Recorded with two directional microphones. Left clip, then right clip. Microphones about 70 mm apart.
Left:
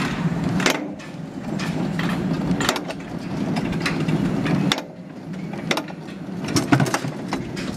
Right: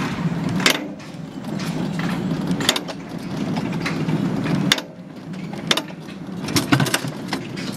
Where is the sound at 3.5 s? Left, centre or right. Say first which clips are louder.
Left 1 dB; left.